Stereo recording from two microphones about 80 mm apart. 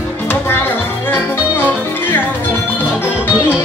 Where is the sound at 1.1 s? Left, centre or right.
Left.